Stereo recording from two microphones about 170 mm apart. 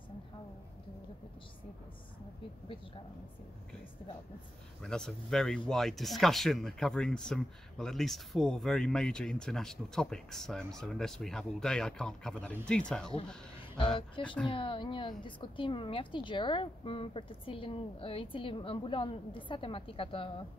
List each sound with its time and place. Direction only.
4.8 s speech: 5° left (ahead or behind)
14.2 s a woman's voice: 30° left (ahead or behind)